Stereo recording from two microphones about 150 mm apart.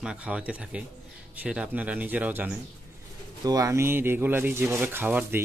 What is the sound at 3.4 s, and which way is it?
Speech, 25° right (ahead or behind).